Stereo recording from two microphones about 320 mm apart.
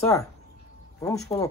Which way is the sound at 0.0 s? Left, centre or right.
Centre.